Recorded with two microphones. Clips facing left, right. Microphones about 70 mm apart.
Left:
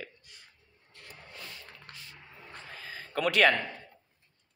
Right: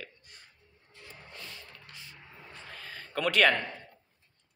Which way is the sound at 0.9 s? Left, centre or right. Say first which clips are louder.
Even; left.